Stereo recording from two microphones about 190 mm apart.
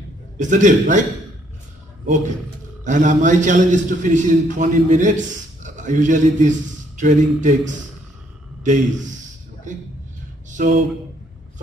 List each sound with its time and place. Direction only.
0.4 s a man's voice: 40° right (ahead or behind)
2.8 s a man's voice: 40° right (ahead or behind)
10.5 s a sound: 40° right (ahead or behind)